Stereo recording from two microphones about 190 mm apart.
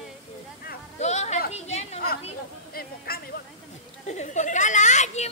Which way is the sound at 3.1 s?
55° left (ahead or behind).